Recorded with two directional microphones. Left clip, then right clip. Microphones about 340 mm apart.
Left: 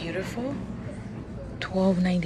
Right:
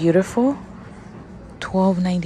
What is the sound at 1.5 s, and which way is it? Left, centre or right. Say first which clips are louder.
Speech: right 5 dB; centre.